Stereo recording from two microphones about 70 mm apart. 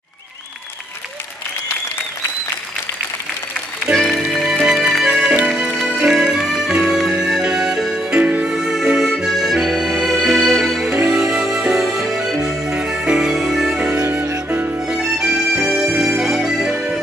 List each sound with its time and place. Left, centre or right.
3.9 s music: centre
9.1 s accordion: centre
11.0 s music: centre; by 14.8 s right
14.9 s music: centre